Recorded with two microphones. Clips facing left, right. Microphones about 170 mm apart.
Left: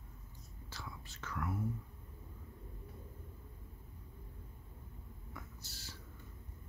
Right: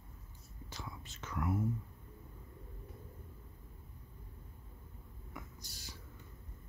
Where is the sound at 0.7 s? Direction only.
20° right (ahead or behind).